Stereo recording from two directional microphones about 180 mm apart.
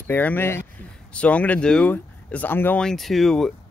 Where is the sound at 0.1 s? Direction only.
10° left (ahead or behind).